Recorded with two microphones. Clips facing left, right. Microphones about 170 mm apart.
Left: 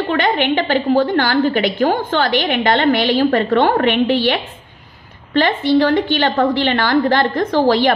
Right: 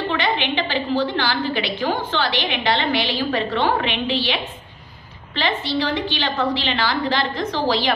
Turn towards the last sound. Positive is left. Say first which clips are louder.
# left 7 dB
turn(degrees=50)  # may be behind; listen again after turning